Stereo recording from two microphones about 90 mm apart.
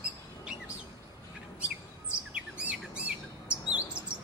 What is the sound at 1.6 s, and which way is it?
Bird, 15° right (ahead or behind).